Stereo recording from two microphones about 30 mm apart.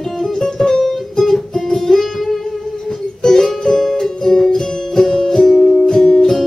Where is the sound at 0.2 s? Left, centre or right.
Centre.